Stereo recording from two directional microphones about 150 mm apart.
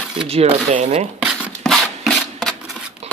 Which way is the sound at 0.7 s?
55° right (ahead or behind).